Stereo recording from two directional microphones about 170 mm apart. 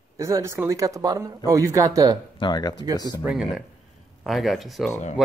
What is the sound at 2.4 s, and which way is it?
Speech, 25° left (ahead or behind).